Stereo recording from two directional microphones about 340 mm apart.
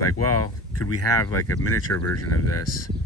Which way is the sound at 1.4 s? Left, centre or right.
Left.